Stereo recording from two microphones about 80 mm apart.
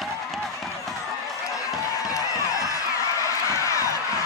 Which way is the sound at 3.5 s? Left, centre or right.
Left.